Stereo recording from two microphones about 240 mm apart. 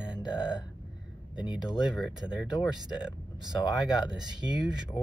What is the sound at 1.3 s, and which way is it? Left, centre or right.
Speech, centre.